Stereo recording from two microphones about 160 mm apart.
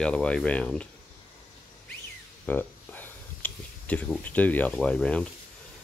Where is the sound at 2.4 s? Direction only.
10° left (ahead or behind).